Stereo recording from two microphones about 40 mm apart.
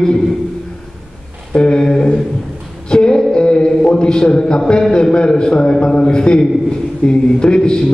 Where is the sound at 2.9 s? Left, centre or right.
Left.